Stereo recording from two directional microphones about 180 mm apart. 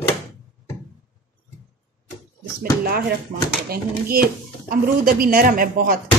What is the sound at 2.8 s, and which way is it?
A woman's voice, 55° right (ahead or behind).